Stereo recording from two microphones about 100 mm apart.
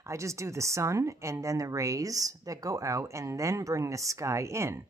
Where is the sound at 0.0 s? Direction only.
30° right (ahead or behind).